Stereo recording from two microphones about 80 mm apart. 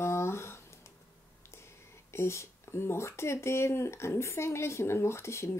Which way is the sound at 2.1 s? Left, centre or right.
Left.